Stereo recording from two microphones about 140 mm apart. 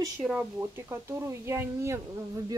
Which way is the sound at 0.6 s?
20° right (ahead or behind).